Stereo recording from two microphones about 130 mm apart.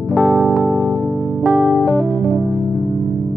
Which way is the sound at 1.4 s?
15° left (ahead or behind).